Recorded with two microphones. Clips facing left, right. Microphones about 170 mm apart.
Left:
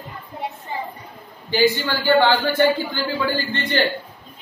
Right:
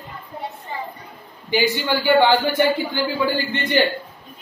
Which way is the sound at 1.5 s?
15° right (ahead or behind).